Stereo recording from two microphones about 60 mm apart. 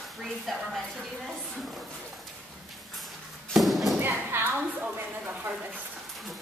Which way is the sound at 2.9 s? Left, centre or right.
Centre.